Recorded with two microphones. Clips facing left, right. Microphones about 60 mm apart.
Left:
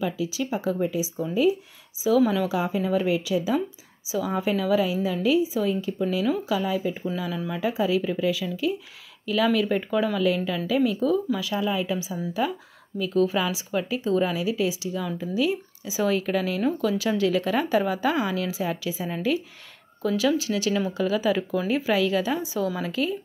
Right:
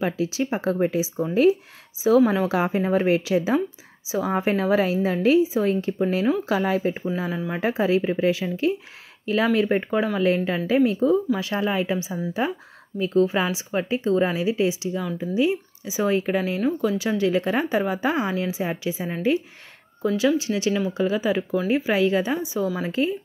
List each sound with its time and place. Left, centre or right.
0.0 s a woman's voice: right
1.2 s speech: right
2.0 s a woman's voice: right
3.2 s a woman's voice: right
7.2 s a woman's voice: right
7.6 s a woman's voice: right
11.3 s a woman's voice: right; by 20.3 s centre
20.3 s speech: right